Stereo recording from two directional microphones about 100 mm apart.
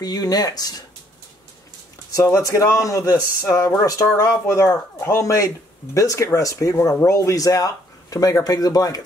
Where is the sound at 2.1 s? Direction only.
30° left (ahead or behind).